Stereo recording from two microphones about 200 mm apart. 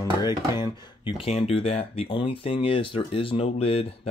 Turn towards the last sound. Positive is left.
turn(degrees=30)  # may be behind; listen again after turning